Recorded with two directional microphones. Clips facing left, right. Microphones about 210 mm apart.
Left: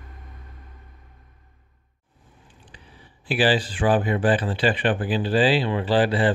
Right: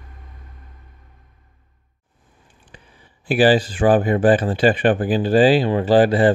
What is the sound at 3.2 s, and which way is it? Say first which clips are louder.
Speech: right 6 dB; 45° right (ahead or behind).